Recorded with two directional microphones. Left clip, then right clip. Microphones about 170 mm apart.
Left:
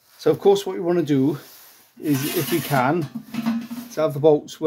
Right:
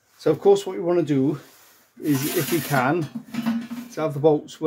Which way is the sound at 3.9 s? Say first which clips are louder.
Left 3 dB; 40° left (ahead or behind).